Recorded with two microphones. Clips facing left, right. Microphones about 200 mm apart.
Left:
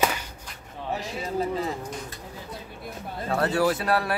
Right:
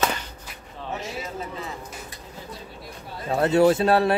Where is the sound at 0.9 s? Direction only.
35° left (ahead or behind).